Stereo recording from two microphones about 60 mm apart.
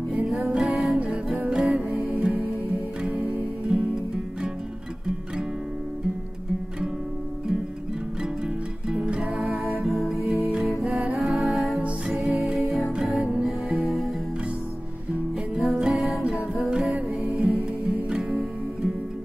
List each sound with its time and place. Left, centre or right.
0.5 s music: centre
0.9 s music: right
1.5 s music: centre
3.0 s music: centre
8.8 s music: centre
9.4 s music: centre
13.5 s music: centre
15.5 s music: centre